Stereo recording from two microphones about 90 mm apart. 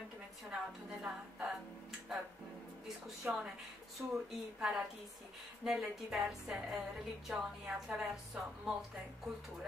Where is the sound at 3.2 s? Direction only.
15° right (ahead or behind).